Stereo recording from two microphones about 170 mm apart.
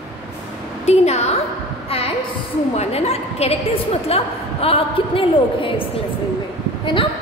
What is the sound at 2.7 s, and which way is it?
A woman's voice, 40° left (ahead or behind).